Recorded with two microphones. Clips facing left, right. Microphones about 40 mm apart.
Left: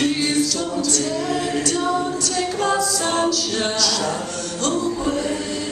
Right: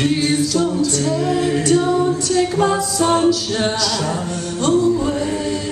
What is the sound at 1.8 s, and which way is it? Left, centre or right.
A capella, centre.